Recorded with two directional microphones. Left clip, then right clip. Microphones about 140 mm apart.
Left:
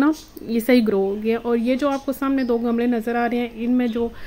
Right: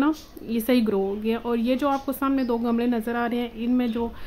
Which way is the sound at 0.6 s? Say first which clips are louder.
Left 5 dB; 25° left (ahead or behind).